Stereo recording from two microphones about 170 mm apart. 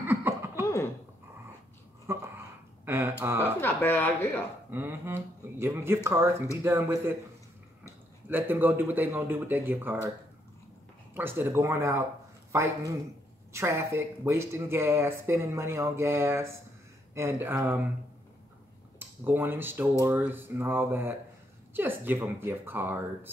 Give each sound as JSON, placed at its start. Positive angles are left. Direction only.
{"t": 0.0, "sound": "a sound", "side_deg": -15}
{"t": 2.0, "sound": "a sound", "side_deg": -15}
{"t": 3.6, "sound": "a woman's voice", "side_deg": 10}
{"t": 4.6, "sound": "speech", "side_deg": -10}
{"t": 8.3, "sound": "speech", "side_deg": -10}
{"t": 11.1, "sound": "speech", "side_deg": -10}
{"t": 18.9, "sound": "speech", "side_deg": -10}